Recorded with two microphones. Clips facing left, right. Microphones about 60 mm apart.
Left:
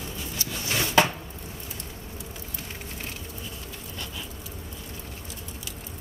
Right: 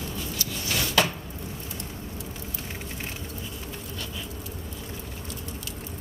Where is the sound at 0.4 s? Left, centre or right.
Left.